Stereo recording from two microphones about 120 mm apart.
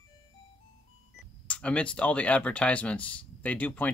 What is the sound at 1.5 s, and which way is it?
Speech, 10° left (ahead or behind).